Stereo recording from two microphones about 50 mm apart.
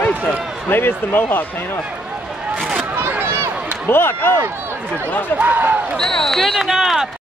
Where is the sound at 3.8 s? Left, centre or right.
Left.